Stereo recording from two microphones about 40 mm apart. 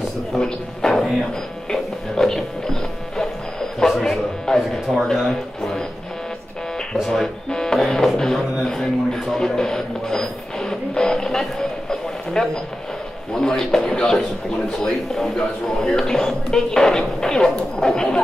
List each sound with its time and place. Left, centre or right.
0.4 s speech: centre
1.7 s music: centre
3.9 s speech: centre
5.6 s speech: centre
7.1 s speech: centre
9.4 s music: centre
12.4 s speech: centre
14.7 s speech: centre